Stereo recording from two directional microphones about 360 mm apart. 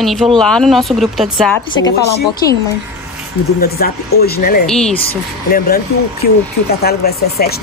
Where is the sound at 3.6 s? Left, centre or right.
Left.